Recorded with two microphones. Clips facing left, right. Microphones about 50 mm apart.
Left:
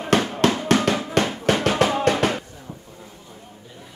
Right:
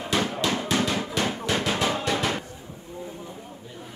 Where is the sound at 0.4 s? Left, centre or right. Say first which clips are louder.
Left 6 dB; left.